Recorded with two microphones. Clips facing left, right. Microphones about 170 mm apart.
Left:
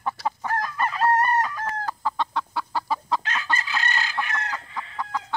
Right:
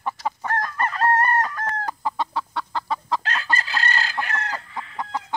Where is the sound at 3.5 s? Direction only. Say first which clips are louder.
Right 2 dB; 35° right (ahead or behind).